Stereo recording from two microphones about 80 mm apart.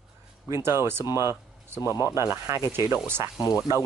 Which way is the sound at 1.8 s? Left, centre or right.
Left.